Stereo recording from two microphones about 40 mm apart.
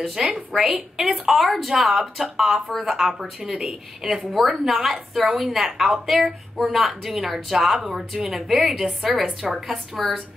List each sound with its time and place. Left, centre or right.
0.3 s a woman's voice: centre
3.4 s speech: centre
4.3 s a woman's voice: centre